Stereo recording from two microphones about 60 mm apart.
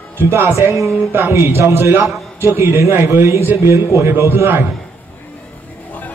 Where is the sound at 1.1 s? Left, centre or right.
Right.